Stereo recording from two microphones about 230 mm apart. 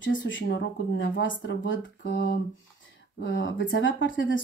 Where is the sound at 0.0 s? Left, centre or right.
Left.